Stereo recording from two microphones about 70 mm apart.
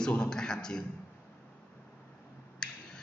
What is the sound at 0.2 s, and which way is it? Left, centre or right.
Speech, centre.